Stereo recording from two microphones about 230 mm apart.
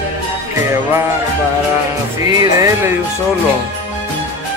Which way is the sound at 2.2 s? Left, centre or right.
Centre.